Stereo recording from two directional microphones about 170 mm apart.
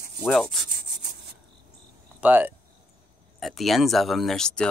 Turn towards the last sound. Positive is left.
turn(degrees=5)  # may be behind; listen again after turning